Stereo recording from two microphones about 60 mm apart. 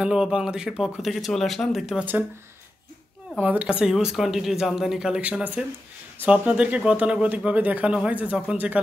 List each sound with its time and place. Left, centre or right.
0.0 s speech: centre
3.3 s speech: right
3.6 s speech: centre
5.2 s speech: centre